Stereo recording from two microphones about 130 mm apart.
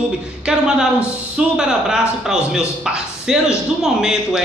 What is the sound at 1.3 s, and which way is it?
Speech, 5° right (ahead or behind).